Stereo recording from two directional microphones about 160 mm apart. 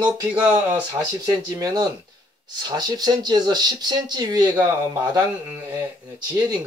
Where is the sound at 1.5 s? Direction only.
20° right (ahead or behind).